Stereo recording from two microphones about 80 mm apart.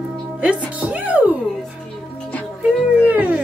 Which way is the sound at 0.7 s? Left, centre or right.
Centre.